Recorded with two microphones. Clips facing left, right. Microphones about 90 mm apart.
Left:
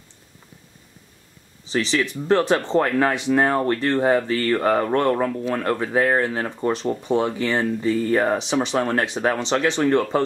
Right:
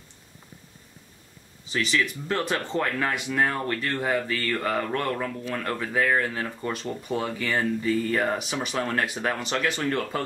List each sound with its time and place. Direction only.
1.7 s speech: 30° left (ahead or behind)